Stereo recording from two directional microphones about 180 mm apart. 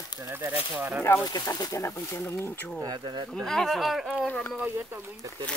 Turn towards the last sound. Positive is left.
turn(degrees=-10)  # may be behind; listen again after turning